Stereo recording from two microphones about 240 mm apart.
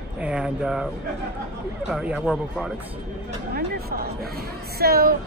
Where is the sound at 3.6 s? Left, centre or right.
Right.